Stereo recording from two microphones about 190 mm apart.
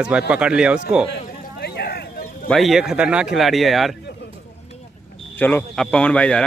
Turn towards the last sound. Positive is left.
turn(degrees=5)  # may be behind; listen again after turning